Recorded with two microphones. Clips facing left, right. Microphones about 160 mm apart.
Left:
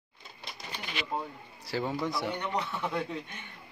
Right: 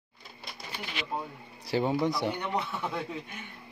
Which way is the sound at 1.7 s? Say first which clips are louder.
Right 5 dB; 20° right (ahead or behind).